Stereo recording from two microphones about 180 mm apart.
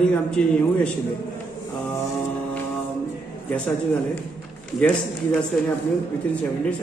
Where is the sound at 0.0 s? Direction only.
5° left (ahead or behind).